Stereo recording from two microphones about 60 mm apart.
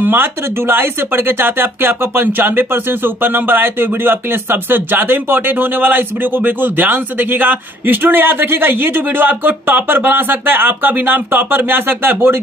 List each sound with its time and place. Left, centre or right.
0.0 s speech: right